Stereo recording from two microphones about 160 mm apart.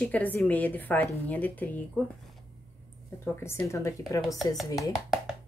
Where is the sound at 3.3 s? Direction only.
15° left (ahead or behind).